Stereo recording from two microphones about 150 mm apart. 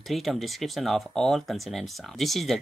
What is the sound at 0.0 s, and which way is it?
Speech, centre (ahead or behind).